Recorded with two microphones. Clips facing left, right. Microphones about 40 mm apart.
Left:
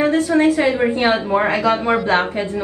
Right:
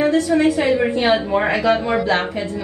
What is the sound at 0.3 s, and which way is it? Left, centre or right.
A woman's voice, left.